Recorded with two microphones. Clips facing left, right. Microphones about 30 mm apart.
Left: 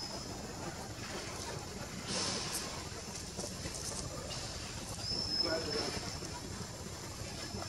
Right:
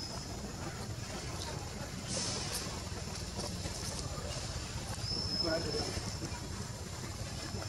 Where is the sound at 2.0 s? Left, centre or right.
Left.